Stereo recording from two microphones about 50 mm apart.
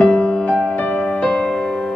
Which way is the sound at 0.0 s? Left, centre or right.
Left.